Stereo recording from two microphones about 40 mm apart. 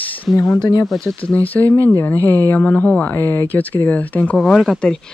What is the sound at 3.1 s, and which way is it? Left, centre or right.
Speech, left.